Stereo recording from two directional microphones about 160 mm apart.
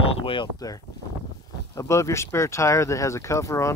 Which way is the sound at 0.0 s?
35° left (ahead or behind).